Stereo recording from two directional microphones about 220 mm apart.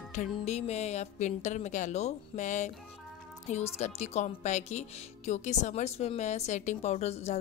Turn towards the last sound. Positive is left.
turn(degrees=30)  # may be behind; listen again after turning